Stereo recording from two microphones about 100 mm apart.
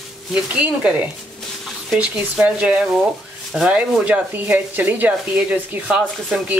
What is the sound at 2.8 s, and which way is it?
Speech, 5° right (ahead or behind).